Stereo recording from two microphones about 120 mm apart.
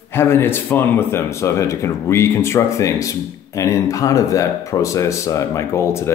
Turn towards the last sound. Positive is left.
turn(degrees=25)  # may be behind; listen again after turning